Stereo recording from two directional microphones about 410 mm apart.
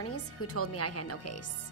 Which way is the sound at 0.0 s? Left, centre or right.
Left.